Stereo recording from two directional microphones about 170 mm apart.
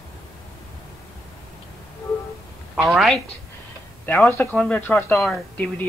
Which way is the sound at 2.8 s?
Centre (ahead or behind).